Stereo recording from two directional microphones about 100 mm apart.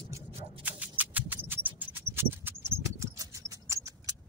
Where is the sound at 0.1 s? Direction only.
25° right (ahead or behind).